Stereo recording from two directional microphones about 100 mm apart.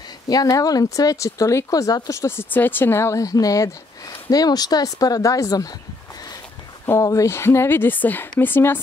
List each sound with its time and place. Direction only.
0.3 s speech: 40° left (ahead or behind)
6.9 s speech: 35° left (ahead or behind)